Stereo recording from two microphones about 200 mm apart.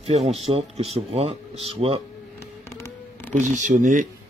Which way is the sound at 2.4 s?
15° left (ahead or behind).